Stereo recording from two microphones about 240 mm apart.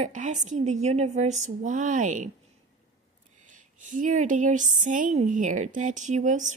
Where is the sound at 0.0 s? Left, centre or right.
Right.